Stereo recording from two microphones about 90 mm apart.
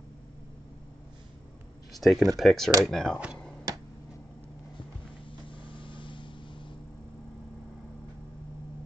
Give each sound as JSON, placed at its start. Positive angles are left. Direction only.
{"t": 2.0, "sound": "speech", "side_deg": 0}
{"t": 5.5, "sound": "vehicle", "side_deg": 70}